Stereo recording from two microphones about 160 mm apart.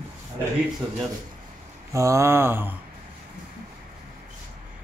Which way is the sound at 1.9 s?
20° right (ahead or behind).